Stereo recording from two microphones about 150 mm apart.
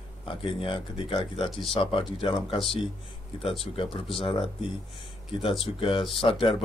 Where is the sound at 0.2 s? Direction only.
35° left (ahead or behind).